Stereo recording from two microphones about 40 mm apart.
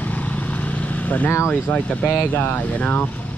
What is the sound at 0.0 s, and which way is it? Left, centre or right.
Vehicle, left.